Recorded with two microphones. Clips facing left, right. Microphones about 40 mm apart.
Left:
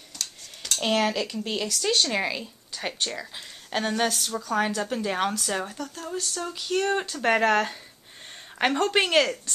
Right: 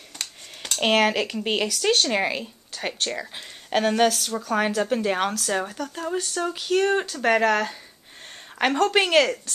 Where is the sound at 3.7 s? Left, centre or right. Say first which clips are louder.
Right 5 dB; centre.